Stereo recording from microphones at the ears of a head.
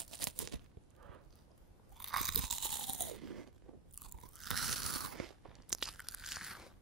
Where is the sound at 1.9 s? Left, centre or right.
Right.